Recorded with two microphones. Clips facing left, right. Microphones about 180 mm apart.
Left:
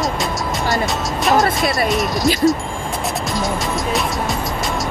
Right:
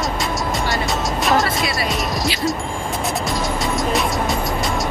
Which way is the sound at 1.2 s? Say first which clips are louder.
Left 4 dB; centre (ahead or behind).